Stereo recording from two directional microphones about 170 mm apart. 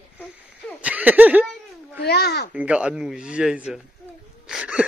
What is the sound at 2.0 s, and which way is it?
Speech, 70° left (ahead or behind).